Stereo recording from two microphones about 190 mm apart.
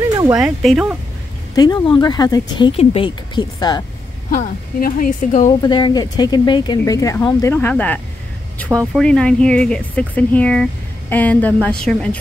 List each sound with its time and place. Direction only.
0.4 s speech: centre (ahead or behind)
1.5 s speech: 20° left (ahead or behind)
4.3 s a woman's voice: 50° left (ahead or behind)
5.6 s speech: 25° left (ahead or behind); by 12.2 s 5° left (ahead or behind)